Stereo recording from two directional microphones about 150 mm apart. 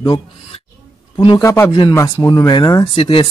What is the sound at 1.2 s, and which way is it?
Speech, 30° left (ahead or behind).